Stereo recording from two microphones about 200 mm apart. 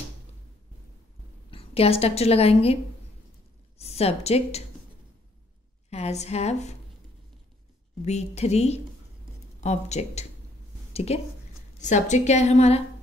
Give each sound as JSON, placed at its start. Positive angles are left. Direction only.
{"t": 1.5, "sound": "a woman's voice", "side_deg": 30}
{"t": 5.9, "sound": "a woman's voice", "side_deg": 35}
{"t": 8.0, "sound": "a woman's voice", "side_deg": 35}
{"t": 10.9, "sound": "a sound", "side_deg": 30}
{"t": 11.8, "sound": "a woman's voice", "side_deg": 35}